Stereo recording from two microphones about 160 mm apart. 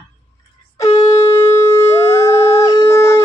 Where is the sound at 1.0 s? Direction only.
20° left (ahead or behind).